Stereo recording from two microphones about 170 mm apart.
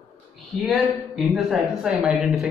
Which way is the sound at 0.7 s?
Centre (ahead or behind).